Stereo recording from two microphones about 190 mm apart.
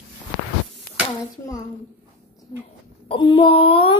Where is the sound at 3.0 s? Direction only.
30° left (ahead or behind).